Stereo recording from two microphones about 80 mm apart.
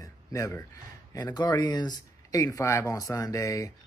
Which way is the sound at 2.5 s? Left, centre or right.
Left.